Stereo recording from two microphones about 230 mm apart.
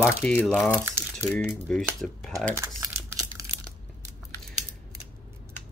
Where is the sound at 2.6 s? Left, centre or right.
Centre.